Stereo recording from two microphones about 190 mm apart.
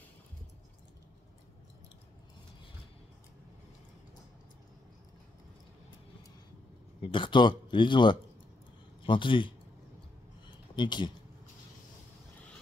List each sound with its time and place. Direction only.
7.0 s speech: 25° left (ahead or behind)
10.8 s speech: 25° left (ahead or behind)